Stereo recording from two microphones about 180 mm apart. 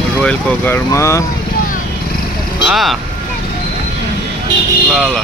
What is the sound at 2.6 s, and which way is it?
Speech, centre (ahead or behind).